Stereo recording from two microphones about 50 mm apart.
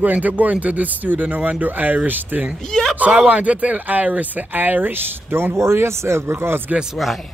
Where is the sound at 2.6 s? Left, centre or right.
Centre.